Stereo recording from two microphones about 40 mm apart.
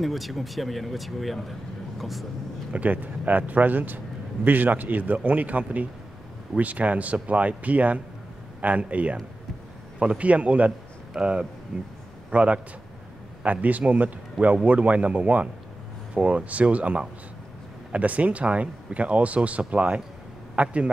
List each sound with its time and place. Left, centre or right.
0.0 s speech: centre
2.7 s a man's voice: right